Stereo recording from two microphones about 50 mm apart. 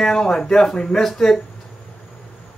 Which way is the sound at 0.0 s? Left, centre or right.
Centre.